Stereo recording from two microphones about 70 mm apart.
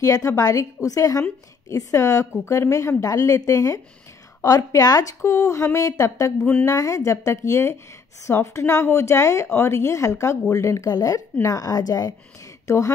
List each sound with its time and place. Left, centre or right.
0.0 s a woman's voice: left
2.3 s a woman's voice: left
5.2 s a woman's voice: left
12.6 s a woman's voice: left